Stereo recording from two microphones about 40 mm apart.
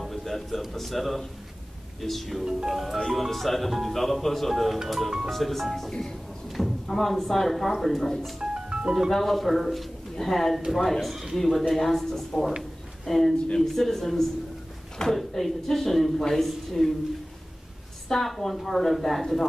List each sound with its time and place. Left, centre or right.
0.0 s a man's voice: centre
2.4 s speech: centre
3.0 s speech: centre
8.4 s music: centre
9.1 s speech: centre
18.0 s speech: centre